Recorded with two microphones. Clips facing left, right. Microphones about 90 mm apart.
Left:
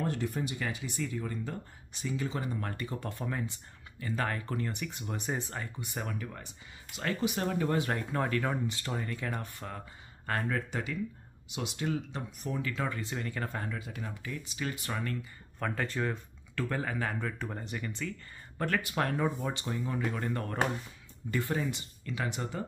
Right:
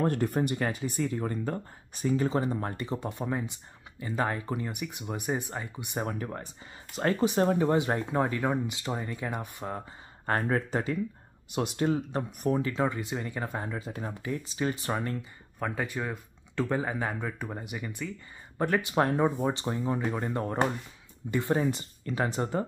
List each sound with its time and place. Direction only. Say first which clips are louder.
0.0 s speech: right 6 dB; 50° right (ahead or behind); by 2.7 s 30° right (ahead or behind)
2.7 s speech: right 4 dB; 20° right (ahead or behind)
6.1 s speech: right 5 dB; 40° right (ahead or behind); by 9.8 s 15° right (ahead or behind)
9.8 s speech: right 5 dB; 35° right (ahead or behind)
12.6 s speech: right 6 dB; 20° right (ahead or behind)
13.7 s speech: right 5 dB; 30° right (ahead or behind)
15.6 s speech: right 1 dB; 10° right (ahead or behind)
16.5 s speech: right 4 dB; 20° right (ahead or behind)
21.5 s speech: right 6 dB; 40° right (ahead or behind)